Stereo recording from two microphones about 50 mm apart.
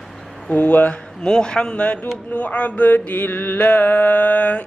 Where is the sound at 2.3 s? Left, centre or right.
Left.